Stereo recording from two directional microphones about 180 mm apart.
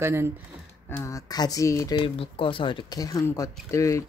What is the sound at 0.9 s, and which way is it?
Speech, 15° left (ahead or behind).